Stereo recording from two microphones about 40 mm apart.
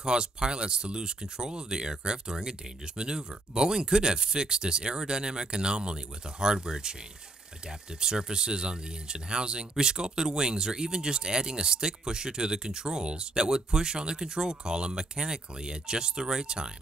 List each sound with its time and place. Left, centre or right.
0.0 s speech: centre